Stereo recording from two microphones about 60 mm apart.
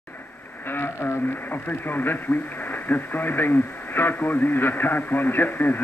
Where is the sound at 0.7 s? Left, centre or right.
Left.